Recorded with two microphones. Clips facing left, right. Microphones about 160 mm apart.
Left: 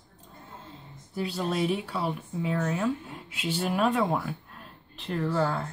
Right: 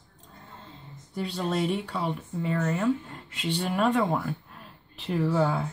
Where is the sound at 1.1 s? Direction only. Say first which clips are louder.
Even; centre (ahead or behind).